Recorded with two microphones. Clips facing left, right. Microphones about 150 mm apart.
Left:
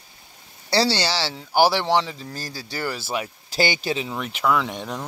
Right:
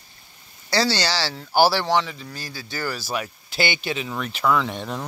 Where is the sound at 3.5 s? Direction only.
35° left (ahead or behind).